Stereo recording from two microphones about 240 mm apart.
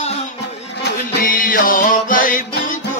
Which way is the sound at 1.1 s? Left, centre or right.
Left.